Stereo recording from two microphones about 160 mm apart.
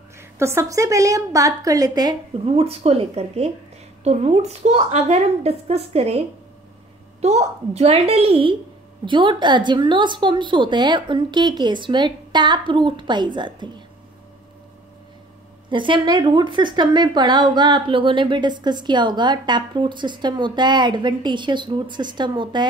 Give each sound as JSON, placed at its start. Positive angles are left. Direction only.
{"t": 0.2, "sound": "speech", "side_deg": -15}
{"t": 2.4, "sound": "a woman's voice", "side_deg": -35}
{"t": 15.7, "sound": "speech", "side_deg": -30}